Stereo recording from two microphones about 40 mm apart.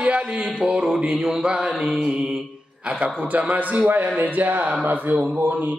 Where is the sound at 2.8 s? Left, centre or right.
Right.